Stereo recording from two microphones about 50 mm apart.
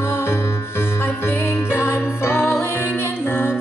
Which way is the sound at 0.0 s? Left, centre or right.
Left.